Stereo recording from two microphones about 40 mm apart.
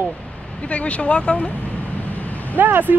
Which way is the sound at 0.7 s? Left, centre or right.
Left.